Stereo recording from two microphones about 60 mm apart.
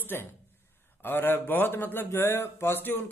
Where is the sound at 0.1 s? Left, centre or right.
Left.